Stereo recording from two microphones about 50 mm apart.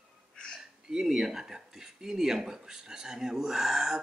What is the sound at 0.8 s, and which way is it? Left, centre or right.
Speech, centre.